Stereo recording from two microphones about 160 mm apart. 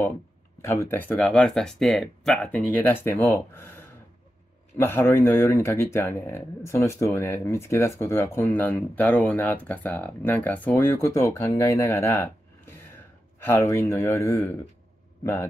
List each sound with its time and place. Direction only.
0.6 s speech: 20° left (ahead or behind)
4.7 s speech: 15° left (ahead or behind)
13.4 s speech: 15° left (ahead or behind)